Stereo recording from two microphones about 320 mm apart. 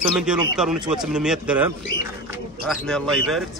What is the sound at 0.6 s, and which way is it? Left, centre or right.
Speech, centre.